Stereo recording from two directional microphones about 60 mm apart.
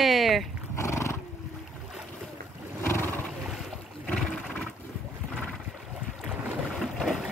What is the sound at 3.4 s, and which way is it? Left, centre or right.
Boat, centre.